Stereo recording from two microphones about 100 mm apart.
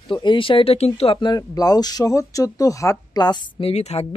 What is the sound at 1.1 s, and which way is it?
Speech, 45° left (ahead or behind).